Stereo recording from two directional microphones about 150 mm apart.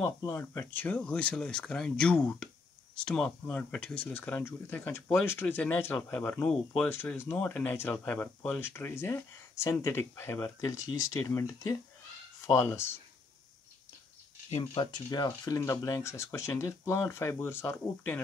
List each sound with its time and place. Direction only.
0.0 s speech: 20° left (ahead or behind)
14.5 s speech: 40° left (ahead or behind)
15.0 s speech: 25° left (ahead or behind)